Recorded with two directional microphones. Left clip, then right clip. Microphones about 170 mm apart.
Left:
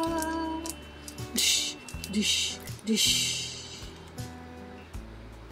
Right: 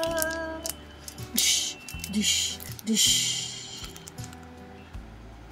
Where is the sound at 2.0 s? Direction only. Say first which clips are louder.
Right 2 dB; centre (ahead or behind).